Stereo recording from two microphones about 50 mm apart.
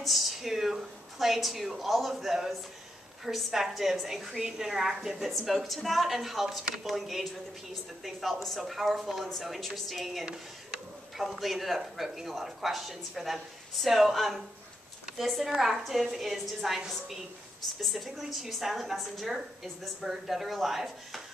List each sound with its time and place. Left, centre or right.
0.0 s a woman's voice: centre